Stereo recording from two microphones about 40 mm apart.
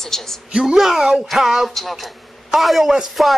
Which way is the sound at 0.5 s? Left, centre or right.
Right.